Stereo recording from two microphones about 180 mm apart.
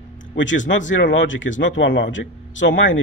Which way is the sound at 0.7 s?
90° left.